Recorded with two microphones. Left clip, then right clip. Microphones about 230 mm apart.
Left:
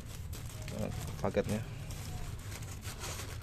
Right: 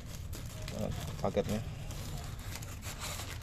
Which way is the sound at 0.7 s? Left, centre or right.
Centre.